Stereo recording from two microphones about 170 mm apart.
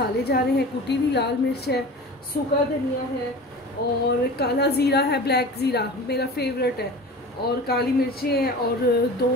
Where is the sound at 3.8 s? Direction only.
60° left (ahead or behind).